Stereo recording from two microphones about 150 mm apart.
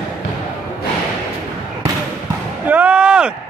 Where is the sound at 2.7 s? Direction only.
10° right (ahead or behind).